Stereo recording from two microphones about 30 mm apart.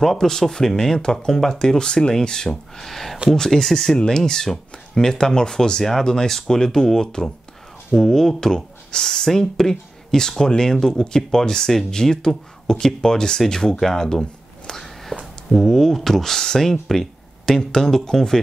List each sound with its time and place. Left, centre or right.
0.0 s speech: centre
1.0 s speech: left
1.3 s speech: centre
1.8 s speech: left
2.7 s speech: centre
3.3 s speech: centre
3.6 s speech: centre
3.9 s speech: left
14.8 s whispering: centre
15.5 s speech: centre